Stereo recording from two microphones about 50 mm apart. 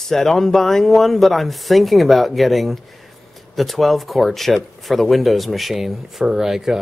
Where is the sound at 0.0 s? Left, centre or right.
Centre.